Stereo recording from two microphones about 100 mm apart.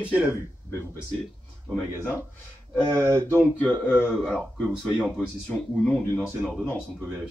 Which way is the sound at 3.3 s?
20° left (ahead or behind).